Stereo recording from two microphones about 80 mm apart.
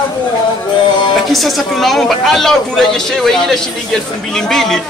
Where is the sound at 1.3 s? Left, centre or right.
Centre.